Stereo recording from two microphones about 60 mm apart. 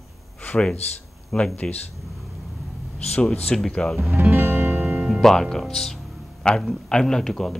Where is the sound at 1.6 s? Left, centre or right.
Left.